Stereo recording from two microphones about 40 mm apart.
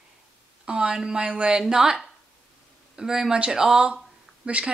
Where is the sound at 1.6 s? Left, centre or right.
Centre.